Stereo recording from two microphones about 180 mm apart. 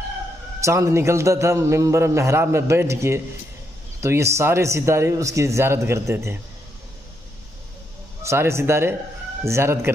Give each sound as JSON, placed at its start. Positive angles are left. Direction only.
{"t": 0.7, "sound": "a man's voice", "side_deg": -15}
{"t": 8.2, "sound": "a man's voice", "side_deg": -15}